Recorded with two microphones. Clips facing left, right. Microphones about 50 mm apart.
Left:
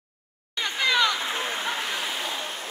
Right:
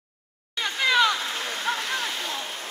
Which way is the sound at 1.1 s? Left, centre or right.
Centre.